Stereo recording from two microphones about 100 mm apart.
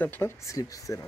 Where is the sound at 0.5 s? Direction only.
35° left (ahead or behind).